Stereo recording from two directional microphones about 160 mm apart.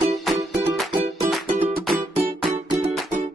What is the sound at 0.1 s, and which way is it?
Music, centre (ahead or behind).